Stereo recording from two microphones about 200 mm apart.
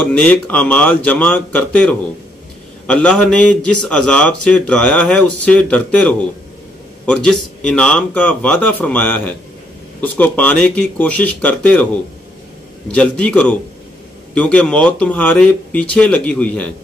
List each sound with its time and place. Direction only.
0.0 s a man's voice: 5° left (ahead or behind)